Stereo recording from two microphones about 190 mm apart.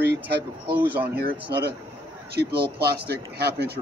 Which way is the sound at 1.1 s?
60° right (ahead or behind).